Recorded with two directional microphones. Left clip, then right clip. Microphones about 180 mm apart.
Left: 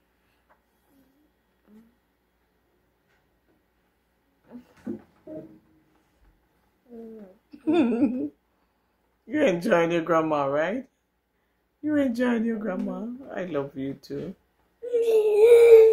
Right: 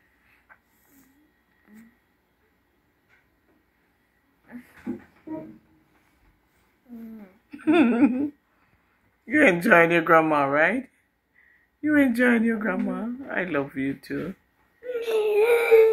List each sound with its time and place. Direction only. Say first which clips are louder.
4.5 s a sound: right 3 dB; 15° left (ahead or behind)
7.4 s speech: right 3 dB; 5° left (ahead or behind)
9.3 s speech: right 5 dB; centre (ahead or behind)
14.9 s whimper: left 3 dB; 5° left (ahead or behind)